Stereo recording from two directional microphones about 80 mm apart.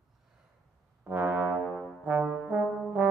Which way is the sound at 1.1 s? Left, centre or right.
Right.